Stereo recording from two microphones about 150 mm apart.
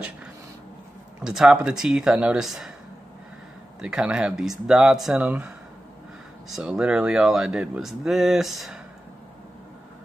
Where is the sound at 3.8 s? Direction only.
5° right (ahead or behind).